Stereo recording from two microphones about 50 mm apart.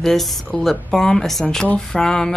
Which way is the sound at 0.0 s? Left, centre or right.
Centre.